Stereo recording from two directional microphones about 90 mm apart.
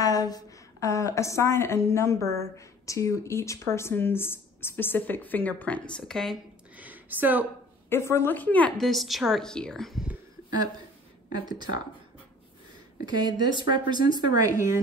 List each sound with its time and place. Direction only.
0.0 s a woman's voice: 45° left (ahead or behind); by 5.9 s 15° left (ahead or behind)
5.9 s a woman's voice: 5° left (ahead or behind)
6.8 s a sound: 20° right (ahead or behind)
7.9 s a woman's voice: 30° left (ahead or behind)
8.7 s a woman's voice: centre (ahead or behind)
11.4 s speech: 55° right (ahead or behind)
13.0 s speech: 50° right (ahead or behind)
14.4 s a woman's voice: 35° right (ahead or behind)